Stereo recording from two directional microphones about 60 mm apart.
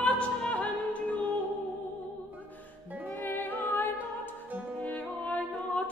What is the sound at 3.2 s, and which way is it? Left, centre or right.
Music, left.